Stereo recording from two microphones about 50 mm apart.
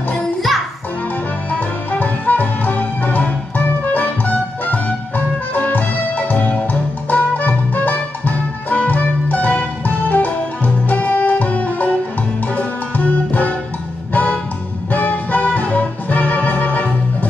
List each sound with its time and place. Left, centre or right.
1.5 s music: left